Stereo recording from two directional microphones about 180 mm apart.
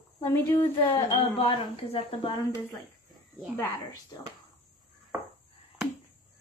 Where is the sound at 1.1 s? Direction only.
30° left (ahead or behind).